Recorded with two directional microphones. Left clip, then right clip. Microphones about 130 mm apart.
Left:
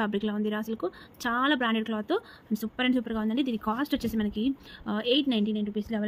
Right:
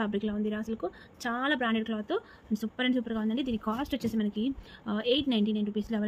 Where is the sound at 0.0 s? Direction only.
35° left (ahead or behind).